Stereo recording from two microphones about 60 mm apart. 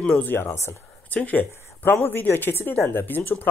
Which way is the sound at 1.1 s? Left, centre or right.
Left.